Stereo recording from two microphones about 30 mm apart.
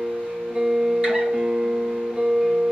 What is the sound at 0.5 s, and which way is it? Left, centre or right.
Music, right.